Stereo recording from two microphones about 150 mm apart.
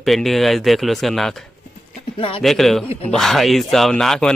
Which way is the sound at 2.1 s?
40° left (ahead or behind).